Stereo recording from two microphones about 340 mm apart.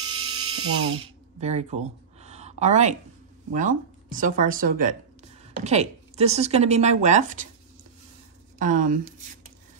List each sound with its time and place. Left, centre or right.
0.1 s electric toothbrush: centre
3.5 s a woman's voice: right
8.5 s a woman's voice: right